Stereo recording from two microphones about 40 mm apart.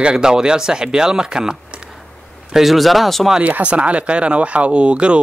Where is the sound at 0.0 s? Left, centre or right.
Right.